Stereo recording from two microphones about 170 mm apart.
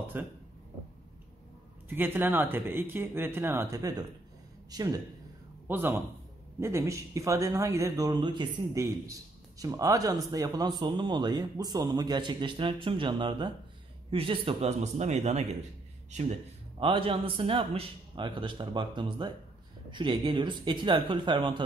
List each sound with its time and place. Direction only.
0.1 s speech: 10° right (ahead or behind)
1.9 s a man's voice: 10° right (ahead or behind)
5.7 s a man's voice: 10° right (ahead or behind); by 16.3 s 40° right (ahead or behind)
16.8 s a man's voice: 30° right (ahead or behind)